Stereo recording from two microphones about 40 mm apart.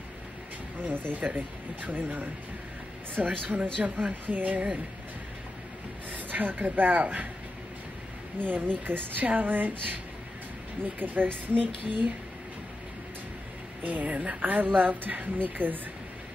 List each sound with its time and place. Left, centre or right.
0.7 s a woman's voice: right
3.2 s speech: right
3.8 s speech: right
4.1 s a woman's voice: right
6.1 s a woman's voice: right
8.4 s a woman's voice: right
13.8 s a woman's voice: right